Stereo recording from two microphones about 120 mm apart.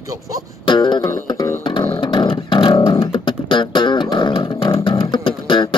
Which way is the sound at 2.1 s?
40° left (ahead or behind).